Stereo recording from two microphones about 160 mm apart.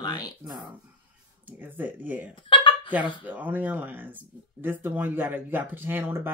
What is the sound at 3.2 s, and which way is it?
Speech, 10° right (ahead or behind).